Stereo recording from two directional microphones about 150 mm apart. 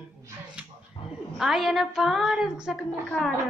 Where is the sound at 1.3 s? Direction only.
Centre (ahead or behind).